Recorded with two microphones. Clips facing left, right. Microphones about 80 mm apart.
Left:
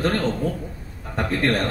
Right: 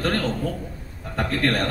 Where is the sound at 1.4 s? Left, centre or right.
Left.